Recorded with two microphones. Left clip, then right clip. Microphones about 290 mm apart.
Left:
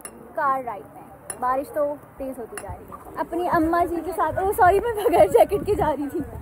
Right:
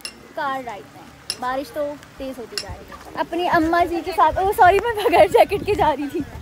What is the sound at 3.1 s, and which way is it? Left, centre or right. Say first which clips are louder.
Speech: right 3 dB; right.